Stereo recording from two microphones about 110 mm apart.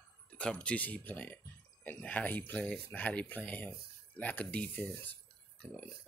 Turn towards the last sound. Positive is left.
turn(degrees=15)  # may be behind; listen again after turning